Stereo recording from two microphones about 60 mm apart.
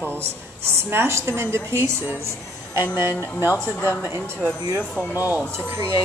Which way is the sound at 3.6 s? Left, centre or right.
Centre.